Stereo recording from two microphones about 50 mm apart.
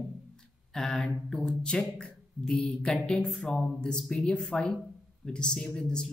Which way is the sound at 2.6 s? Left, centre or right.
Centre.